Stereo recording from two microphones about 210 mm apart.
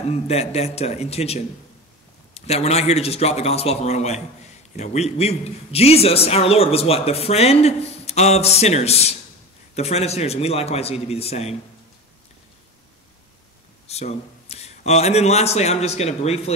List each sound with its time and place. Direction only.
0.1 s a man's voice: 30° left (ahead or behind)
13.8 s a man's voice: 30° left (ahead or behind)